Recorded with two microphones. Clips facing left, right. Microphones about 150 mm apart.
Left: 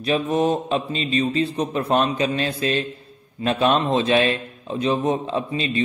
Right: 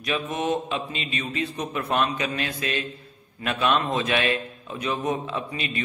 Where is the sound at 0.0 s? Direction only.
35° left (ahead or behind).